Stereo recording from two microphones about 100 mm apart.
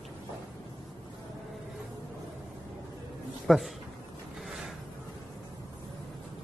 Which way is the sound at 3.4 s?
Centre (ahead or behind).